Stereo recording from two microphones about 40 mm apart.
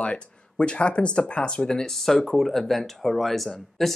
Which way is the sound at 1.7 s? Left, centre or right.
Centre.